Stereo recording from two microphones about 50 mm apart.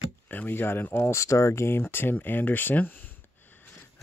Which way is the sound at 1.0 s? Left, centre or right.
Left.